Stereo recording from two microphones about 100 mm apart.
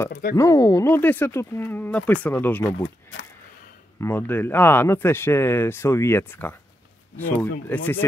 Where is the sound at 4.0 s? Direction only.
20° left (ahead or behind).